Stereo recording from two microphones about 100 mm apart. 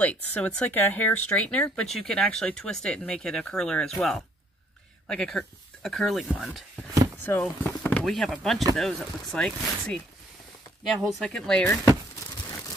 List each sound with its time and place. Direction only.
0.0 s speech: 15° left (ahead or behind)
7.2 s speech: 20° left (ahead or behind)
8.0 s speech: centre (ahead or behind)
11.6 s speech: 20° left (ahead or behind)